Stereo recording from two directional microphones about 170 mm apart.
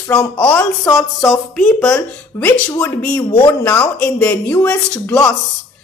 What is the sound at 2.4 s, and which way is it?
A woman's voice, 15° left (ahead or behind).